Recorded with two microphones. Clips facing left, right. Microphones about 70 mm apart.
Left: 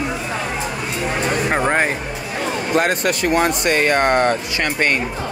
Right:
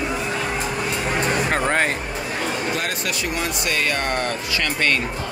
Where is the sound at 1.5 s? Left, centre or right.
Centre.